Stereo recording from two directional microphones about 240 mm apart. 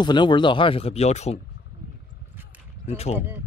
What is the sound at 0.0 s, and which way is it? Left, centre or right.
Speech, centre.